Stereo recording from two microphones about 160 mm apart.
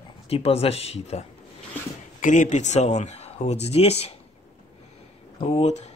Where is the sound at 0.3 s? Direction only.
40° left (ahead or behind).